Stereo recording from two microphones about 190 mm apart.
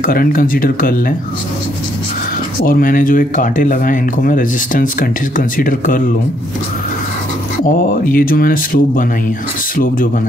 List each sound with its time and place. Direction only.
0.0 s speech: 50° left (ahead or behind)
2.6 s speech: 45° left (ahead or behind)
7.6 s speech: 50° left (ahead or behind)